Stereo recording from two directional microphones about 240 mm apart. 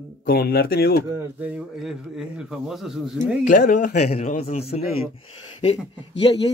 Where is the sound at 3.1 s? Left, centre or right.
Left.